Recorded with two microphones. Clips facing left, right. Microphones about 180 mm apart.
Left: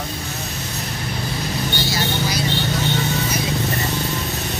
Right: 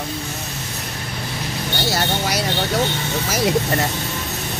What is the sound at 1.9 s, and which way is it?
Vehicle, 75° right (ahead or behind).